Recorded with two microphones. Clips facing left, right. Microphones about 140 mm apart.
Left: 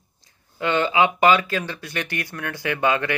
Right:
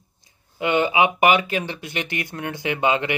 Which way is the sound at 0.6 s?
20° right (ahead or behind).